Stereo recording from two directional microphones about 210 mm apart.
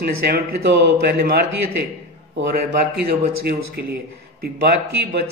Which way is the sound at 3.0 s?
50° right (ahead or behind).